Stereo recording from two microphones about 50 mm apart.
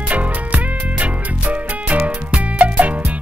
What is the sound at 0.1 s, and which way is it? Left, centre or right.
Music, right.